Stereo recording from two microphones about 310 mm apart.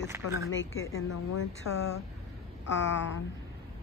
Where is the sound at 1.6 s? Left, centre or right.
Left.